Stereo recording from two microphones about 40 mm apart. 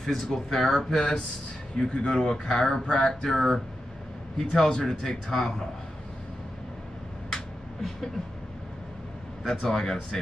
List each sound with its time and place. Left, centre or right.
0.0 s speech: centre
2.9 s a sound: centre
3.3 s speech: centre
4.5 s speech: centre
9.4 s speech: centre